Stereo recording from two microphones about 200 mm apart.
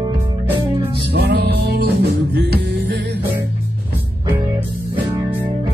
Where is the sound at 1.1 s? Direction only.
55° right (ahead or behind).